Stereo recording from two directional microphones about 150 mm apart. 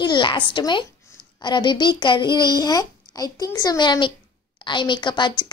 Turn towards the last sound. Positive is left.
turn(degrees=30)  # may be behind; listen again after turning